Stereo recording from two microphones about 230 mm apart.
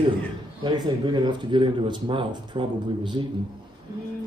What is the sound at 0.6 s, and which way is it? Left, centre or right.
Speech, centre.